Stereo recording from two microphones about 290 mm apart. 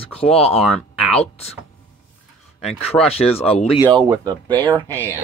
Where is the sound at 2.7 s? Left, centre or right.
Left.